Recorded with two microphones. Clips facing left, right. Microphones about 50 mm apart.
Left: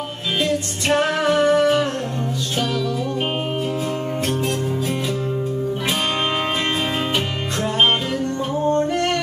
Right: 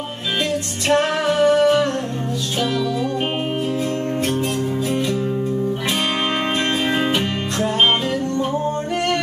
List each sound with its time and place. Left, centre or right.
0.9 s music: centre
8.4 s music: centre